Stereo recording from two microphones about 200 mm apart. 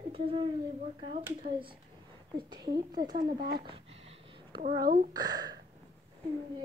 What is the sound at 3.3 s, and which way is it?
Speech, 50° right (ahead or behind).